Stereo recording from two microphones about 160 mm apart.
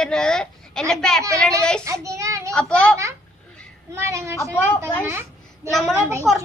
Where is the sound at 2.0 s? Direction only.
20° right (ahead or behind).